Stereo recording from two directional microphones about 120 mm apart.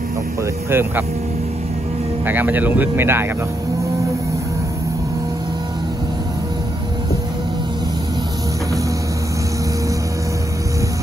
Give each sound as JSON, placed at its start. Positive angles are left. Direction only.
{"t": 0.7, "sound": "speech", "side_deg": -20}
{"t": 2.2, "sound": "speech", "side_deg": -15}